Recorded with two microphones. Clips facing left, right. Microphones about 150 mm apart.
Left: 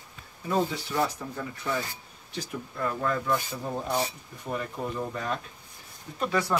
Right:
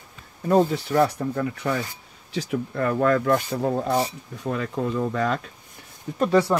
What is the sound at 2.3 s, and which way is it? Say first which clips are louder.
Rub: right 9 dB; 75° right (ahead or behind).